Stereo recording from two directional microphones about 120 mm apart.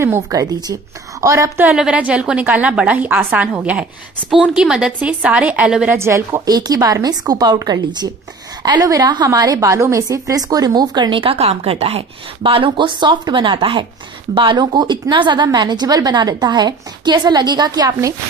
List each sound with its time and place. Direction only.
0.0 s a woman's voice: 25° right (ahead or behind)
1.7 s a woman's voice: 10° right (ahead or behind)
5.9 s a woman's voice: 20° right (ahead or behind)